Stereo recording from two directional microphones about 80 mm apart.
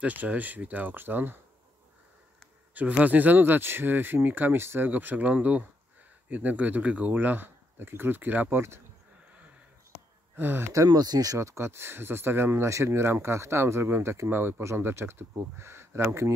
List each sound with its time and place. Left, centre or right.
0.0 s speech: centre
2.7 s speech: centre
10.3 s speech: right
10.9 s speech: right
11.3 s speech: right